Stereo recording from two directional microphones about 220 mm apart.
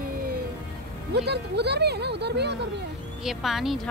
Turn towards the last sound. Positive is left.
turn(degrees=0)  # may be behind; listen again after turning